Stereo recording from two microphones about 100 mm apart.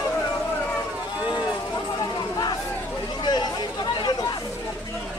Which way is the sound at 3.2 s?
45° left (ahead or behind).